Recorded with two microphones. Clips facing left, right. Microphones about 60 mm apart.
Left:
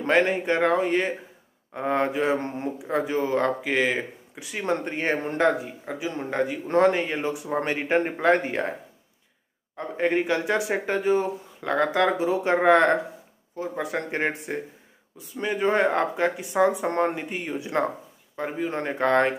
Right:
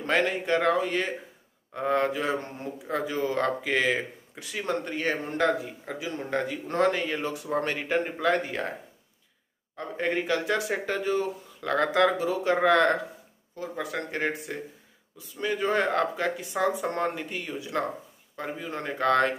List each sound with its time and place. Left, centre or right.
0.2 s speech: left
4.6 s speech: left
5.5 s speech: centre
6.0 s speech: left
7.3 s speech: centre
7.7 s speech: left
9.8 s speech: centre
11.6 s speech: centre
12.2 s speech: left